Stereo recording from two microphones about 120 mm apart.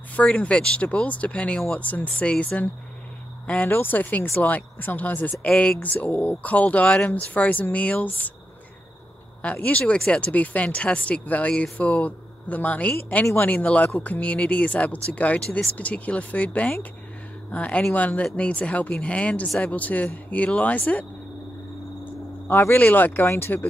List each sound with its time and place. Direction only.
0.1 s speech: 10° left (ahead or behind)
9.4 s speech: 10° left (ahead or behind)
22.5 s speech: 20° left (ahead or behind)